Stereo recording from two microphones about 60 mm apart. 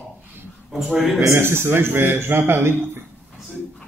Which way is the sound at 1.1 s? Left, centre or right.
Right.